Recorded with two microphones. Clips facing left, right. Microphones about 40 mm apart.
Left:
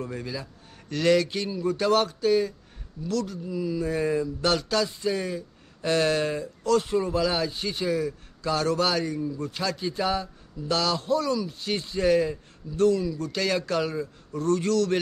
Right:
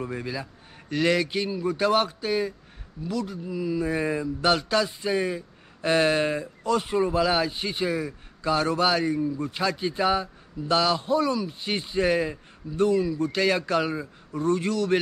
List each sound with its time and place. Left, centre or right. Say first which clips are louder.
0.0 s speech: right 2 dB; centre